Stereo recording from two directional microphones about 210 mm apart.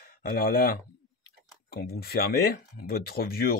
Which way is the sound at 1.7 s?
45° left (ahead or behind).